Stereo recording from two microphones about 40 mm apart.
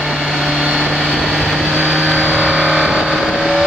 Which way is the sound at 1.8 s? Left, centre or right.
Right.